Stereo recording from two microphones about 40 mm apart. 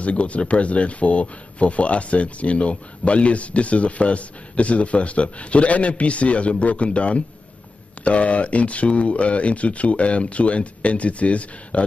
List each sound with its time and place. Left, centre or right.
0.0 s speech: left